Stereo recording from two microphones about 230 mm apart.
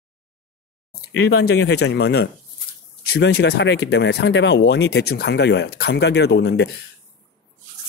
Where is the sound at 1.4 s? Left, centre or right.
Left.